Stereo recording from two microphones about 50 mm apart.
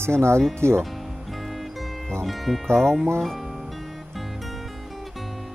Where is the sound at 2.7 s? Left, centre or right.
Centre.